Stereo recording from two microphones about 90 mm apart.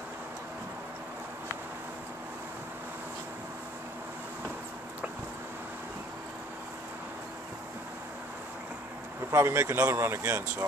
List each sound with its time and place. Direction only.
9.3 s speech: 30° right (ahead or behind)